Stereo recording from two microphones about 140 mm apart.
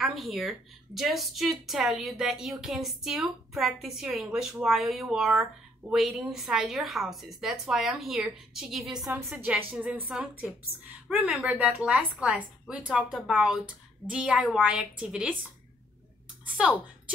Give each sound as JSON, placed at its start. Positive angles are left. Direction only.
{"t": 0.0, "sound": "a woman's voice", "side_deg": 0}
{"t": 9.1, "sound": "a woman's voice", "side_deg": -15}
{"t": 16.5, "sound": "a woman's voice", "side_deg": -10}